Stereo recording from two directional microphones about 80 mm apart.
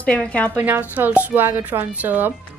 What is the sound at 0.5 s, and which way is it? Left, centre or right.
A woman's voice, right.